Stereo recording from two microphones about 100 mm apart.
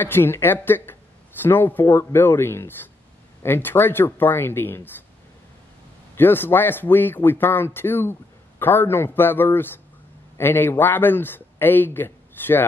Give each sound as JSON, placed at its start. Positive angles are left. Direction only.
{"t": 0.0, "sound": "speech", "side_deg": 20}
{"t": 6.1, "sound": "speech", "side_deg": 20}